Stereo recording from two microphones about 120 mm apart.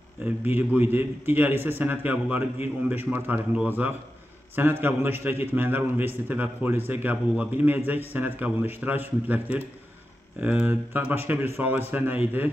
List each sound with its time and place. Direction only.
0.5 s a man's voice: 15° right (ahead or behind)